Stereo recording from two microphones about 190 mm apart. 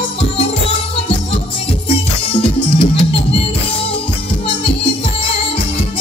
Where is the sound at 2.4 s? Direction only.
30° left (ahead or behind).